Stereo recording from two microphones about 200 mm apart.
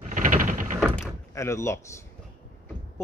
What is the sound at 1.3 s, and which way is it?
Speech, 15° left (ahead or behind).